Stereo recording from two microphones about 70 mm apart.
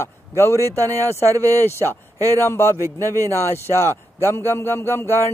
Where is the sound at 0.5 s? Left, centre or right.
Right.